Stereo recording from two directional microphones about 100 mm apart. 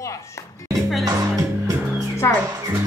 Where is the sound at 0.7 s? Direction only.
Centre (ahead or behind).